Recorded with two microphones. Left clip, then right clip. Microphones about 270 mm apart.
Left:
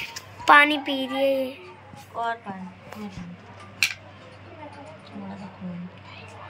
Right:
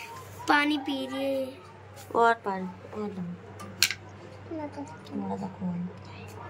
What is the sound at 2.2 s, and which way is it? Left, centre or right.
Speech, centre.